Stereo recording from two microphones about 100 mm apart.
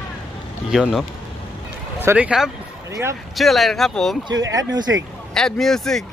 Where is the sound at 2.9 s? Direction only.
30° right (ahead or behind).